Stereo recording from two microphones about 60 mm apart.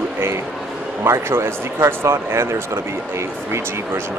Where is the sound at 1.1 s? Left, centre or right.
Right.